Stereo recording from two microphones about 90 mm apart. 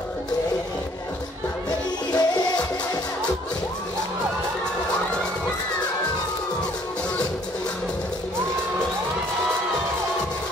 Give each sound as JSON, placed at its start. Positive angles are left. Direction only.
{"t": 2.1, "sound": "music", "side_deg": 45}